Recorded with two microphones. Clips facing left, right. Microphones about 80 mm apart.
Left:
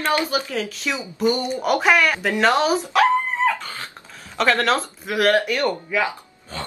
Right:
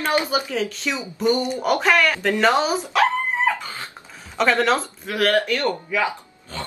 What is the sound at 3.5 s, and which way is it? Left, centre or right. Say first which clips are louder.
Dog: even; centre.